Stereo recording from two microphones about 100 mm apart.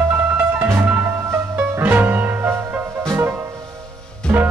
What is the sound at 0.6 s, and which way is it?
Music, 20° right (ahead or behind).